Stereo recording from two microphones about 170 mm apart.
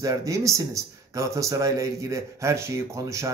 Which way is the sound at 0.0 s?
20° right (ahead or behind).